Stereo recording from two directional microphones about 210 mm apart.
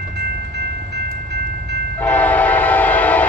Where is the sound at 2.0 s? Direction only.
5° left (ahead or behind).